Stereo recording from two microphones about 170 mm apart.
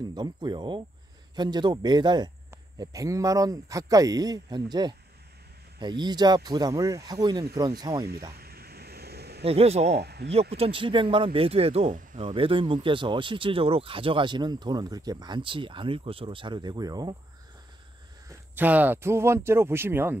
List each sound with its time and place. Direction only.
0.1 s speech: 25° right (ahead or behind)
8.4 s vehicle: 65° right (ahead or behind)
9.4 s speech: 35° right (ahead or behind)
9.9 s speech: 75° right (ahead or behind)
10.5 s speech: 35° right (ahead or behind)
18.5 s speech: 10° right (ahead or behind)